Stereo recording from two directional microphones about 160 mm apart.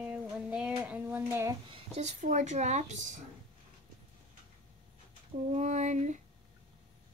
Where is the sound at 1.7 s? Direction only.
45° right (ahead or behind).